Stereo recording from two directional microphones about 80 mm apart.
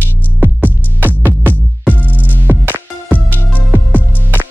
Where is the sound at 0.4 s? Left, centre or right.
Right.